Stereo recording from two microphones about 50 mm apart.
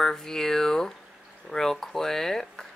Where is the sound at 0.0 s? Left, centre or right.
Centre.